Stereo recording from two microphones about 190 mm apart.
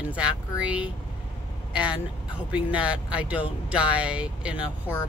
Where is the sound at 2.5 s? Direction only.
5° right (ahead or behind).